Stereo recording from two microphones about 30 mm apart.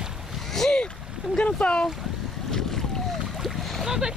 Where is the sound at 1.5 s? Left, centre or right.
Left.